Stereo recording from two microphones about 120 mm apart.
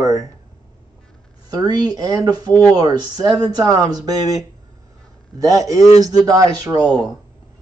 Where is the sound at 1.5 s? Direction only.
35° right (ahead or behind).